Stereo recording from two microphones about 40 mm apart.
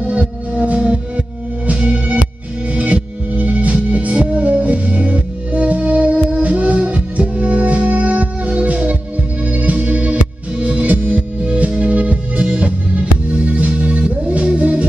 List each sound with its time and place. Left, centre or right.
0.0 s music: right